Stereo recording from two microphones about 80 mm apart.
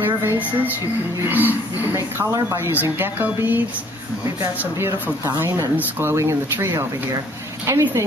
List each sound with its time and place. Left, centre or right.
0.0 s speech: right
4.4 s speech: right